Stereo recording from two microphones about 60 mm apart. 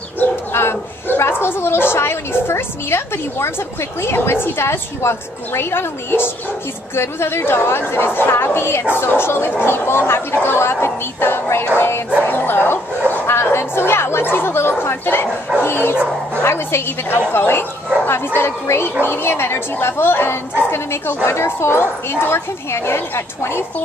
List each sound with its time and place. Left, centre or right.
0.5 s a sound: left
4.0 s a woman's voice: left
12.3 s bow-wow: left
13.3 s a woman's voice: left